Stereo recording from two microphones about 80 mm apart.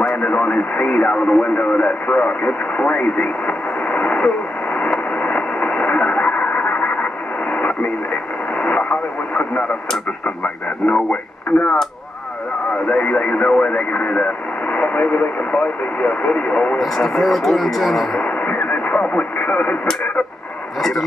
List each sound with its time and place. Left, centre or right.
0.0 s speech: centre
4.7 s radio: centre
8.5 s radio: centre
10.2 s speech: centre
12.8 s speech: centre
16.7 s speech: centre
18.4 s radio: centre